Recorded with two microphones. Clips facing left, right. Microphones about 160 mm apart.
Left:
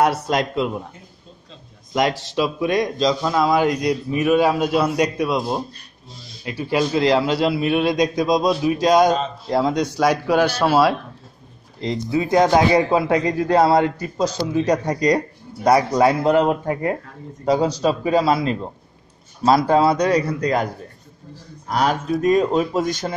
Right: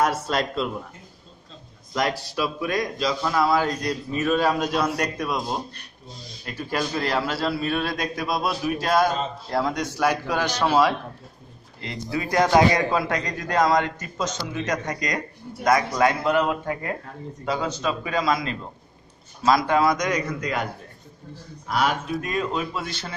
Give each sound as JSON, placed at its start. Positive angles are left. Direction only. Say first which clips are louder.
{"t": 0.0, "sound": "a man's voice", "louder": "left 4 dB", "side_deg": 15}
{"t": 2.2, "sound": "a man's voice", "louder": "left 6 dB", "side_deg": 25}
{"t": 11.8, "sound": "speech", "louder": "left 7 dB", "side_deg": 20}